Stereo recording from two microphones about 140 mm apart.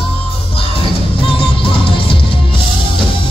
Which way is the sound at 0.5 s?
40° left (ahead or behind).